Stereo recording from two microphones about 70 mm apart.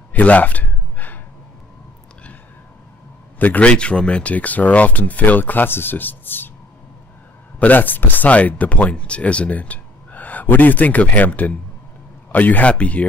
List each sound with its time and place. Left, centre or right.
0.1 s gasp: left
3.3 s speech: left
7.5 s speech: left